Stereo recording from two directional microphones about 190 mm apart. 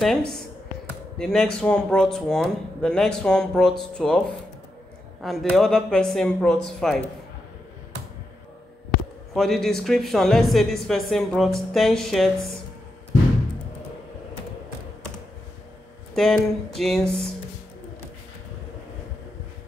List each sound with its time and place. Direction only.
0.0 s speech: centre (ahead or behind)
5.2 s speech: centre (ahead or behind)
9.3 s speech: centre (ahead or behind)
16.2 s speech: centre (ahead or behind)